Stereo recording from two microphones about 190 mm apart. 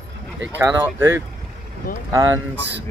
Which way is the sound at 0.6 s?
10° right (ahead or behind).